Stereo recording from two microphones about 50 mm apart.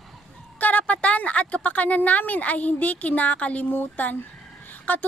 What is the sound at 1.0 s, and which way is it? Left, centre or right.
A woman's voice, left.